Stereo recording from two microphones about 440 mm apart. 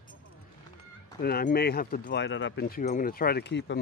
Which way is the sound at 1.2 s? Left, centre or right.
Centre.